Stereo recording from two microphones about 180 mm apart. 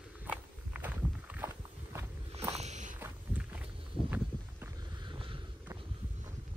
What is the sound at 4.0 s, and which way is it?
Walk, 45° left (ahead or behind).